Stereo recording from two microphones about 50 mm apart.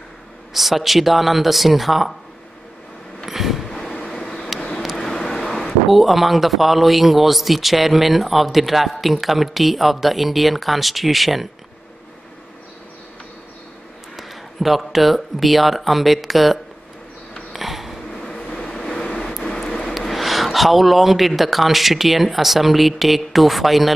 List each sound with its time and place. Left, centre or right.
0.5 s a man's voice: centre
3.3 s a sound: centre
3.7 s vehicle: centre
5.3 s a man's voice: centre
14.1 s speech: centre
17.5 s a sound: centre
18.4 s vehicle: centre
19.9 s speech: centre